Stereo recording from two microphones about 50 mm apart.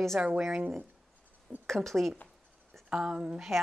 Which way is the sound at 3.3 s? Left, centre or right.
Centre.